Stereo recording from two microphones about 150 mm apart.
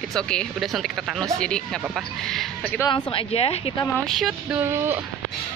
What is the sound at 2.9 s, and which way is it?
Speech, 35° left (ahead or behind).